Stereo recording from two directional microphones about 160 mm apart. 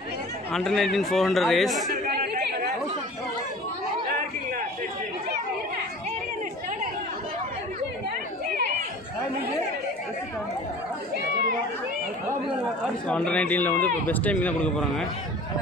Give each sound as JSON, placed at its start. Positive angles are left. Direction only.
{"t": 0.5, "sound": "a man's voice", "side_deg": 5}
{"t": 1.9, "sound": "chatter", "side_deg": -65}
{"t": 13.1, "sound": "a man's voice", "side_deg": 5}